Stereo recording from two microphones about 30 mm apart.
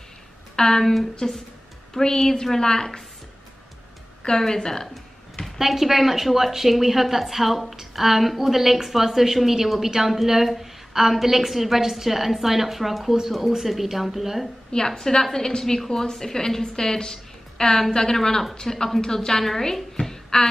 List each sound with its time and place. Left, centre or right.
0.6 s a woman's voice: centre
1.2 s a woman's voice: left
2.0 s a woman's voice: centre
4.2 s a woman's voice: left
5.6 s a woman's voice: centre
14.9 s a woman's voice: centre